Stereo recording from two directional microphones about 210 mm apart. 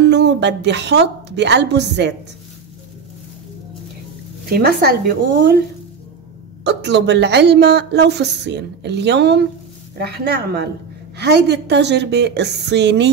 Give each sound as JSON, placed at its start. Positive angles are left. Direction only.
{"t": 0.0, "sound": "a woman's voice", "side_deg": -55}
{"t": 4.5, "sound": "a woman's voice", "side_deg": -45}
{"t": 6.6, "sound": "a woman's voice", "side_deg": -55}